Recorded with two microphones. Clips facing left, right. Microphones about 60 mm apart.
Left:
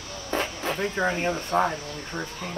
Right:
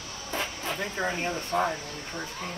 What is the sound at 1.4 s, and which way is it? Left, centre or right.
Speech, left.